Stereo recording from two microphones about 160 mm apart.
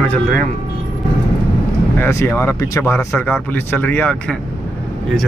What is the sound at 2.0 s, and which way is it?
Speech, 15° left (ahead or behind).